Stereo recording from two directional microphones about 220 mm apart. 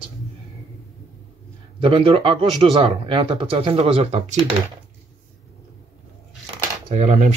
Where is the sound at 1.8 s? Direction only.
25° right (ahead or behind).